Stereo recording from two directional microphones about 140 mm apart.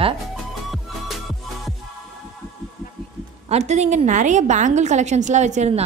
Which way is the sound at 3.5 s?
55° right (ahead or behind).